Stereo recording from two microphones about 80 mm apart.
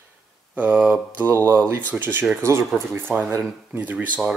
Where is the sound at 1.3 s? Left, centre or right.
Right.